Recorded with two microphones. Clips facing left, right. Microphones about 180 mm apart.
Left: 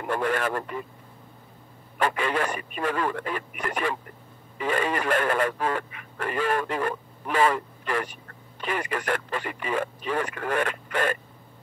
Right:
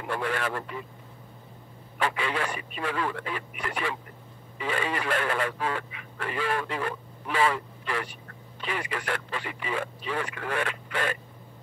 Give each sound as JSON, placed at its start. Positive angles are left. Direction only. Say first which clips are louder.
{"t": 0.0, "sound": "speech", "louder": "left 4 dB", "side_deg": 50}
{"t": 2.0, "sound": "speech", "louder": "left 3 dB", "side_deg": 45}